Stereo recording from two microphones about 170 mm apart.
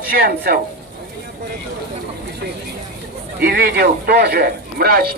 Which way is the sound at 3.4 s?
65° right (ahead or behind).